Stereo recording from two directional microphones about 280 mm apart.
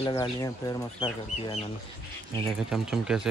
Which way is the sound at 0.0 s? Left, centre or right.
Centre.